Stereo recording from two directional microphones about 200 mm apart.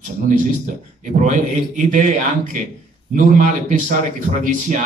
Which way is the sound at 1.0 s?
40° right (ahead or behind).